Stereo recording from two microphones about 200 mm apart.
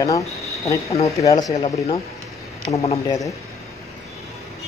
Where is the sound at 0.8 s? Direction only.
30° left (ahead or behind).